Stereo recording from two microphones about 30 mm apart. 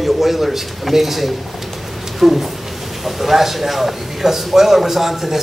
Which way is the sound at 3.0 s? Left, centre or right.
Centre.